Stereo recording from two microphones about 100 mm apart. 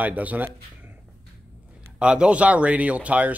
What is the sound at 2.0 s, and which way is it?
Speech, 10° right (ahead or behind).